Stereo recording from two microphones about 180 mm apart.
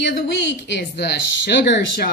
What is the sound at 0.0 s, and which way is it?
A woman's voice, 70° left (ahead or behind).